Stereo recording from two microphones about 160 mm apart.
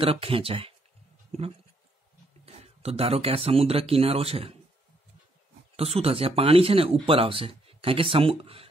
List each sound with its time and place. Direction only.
0.0 s speech: 35° right (ahead or behind)
5.8 s speech: 40° right (ahead or behind)